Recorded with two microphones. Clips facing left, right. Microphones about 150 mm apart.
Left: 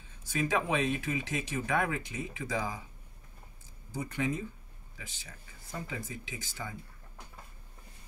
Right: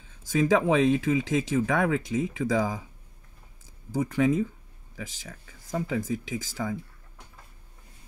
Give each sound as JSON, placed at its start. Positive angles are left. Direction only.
{"t": 0.2, "sound": "speech", "side_deg": -90}
{"t": 3.9, "sound": "speech", "side_deg": -90}